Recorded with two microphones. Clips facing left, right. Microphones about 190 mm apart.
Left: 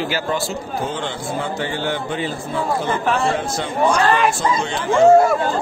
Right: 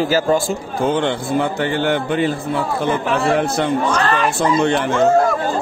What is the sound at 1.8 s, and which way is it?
Speech, 60° right (ahead or behind).